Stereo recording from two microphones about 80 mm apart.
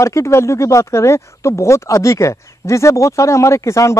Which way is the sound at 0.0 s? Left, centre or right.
Left.